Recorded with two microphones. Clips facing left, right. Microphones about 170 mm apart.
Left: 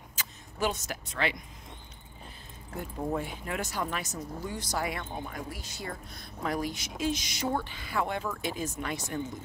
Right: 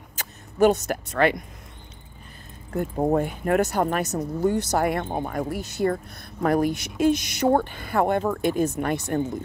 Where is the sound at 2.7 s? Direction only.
55° right (ahead or behind).